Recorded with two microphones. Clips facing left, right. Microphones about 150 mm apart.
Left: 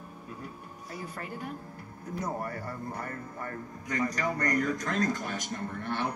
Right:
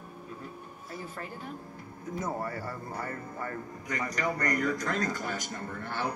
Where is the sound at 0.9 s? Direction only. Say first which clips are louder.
Even; 40° left (ahead or behind).